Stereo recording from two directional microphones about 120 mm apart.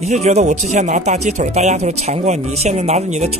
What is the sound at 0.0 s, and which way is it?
Speech, 65° right (ahead or behind).